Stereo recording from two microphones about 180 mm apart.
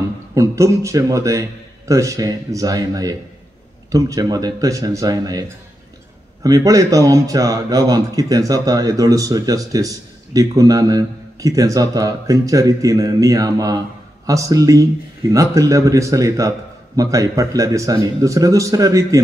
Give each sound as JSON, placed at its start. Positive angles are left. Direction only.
{"t": 0.3, "sound": "a man's voice", "side_deg": -15}
{"t": 6.4, "sound": "a man's voice", "side_deg": -20}